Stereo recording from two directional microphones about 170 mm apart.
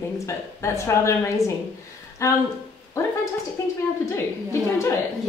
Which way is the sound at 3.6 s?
15° left (ahead or behind).